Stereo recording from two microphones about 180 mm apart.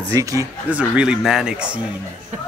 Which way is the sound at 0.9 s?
5° right (ahead or behind).